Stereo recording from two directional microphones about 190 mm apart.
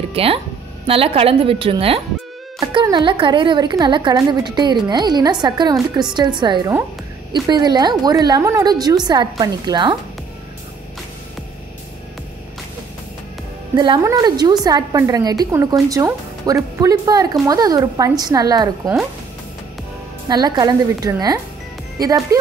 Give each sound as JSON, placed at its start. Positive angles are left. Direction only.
{"t": 0.1, "sound": "a woman's voice", "side_deg": -30}
{"t": 13.7, "sound": "speech", "side_deg": -20}
{"t": 20.2, "sound": "speech", "side_deg": -20}